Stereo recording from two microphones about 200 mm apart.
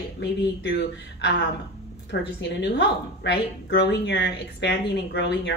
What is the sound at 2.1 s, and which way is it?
A woman's voice, 55° left (ahead or behind).